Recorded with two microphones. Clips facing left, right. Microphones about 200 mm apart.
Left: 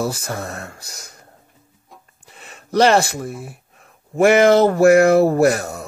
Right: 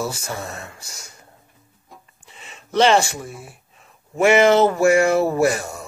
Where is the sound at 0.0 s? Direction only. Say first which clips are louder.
Left 3 dB; 55° left (ahead or behind).